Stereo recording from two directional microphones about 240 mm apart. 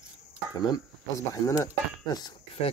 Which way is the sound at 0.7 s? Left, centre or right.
Centre.